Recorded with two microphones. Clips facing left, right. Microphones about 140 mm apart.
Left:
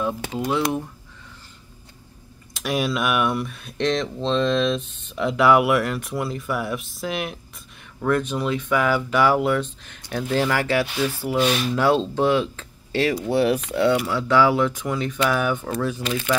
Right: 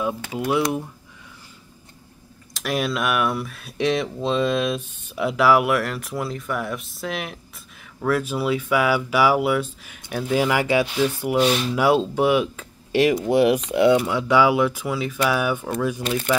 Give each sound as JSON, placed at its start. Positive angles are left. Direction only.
{"t": 2.5, "sound": "speech", "side_deg": 0}